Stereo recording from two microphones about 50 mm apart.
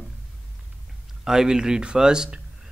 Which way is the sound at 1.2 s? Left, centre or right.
Centre.